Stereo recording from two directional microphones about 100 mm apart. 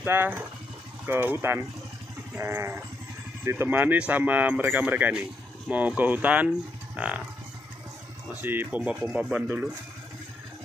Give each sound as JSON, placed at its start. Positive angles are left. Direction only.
{"t": 0.0, "sound": "speech", "side_deg": -25}
{"t": 8.4, "sound": "speech", "side_deg": -20}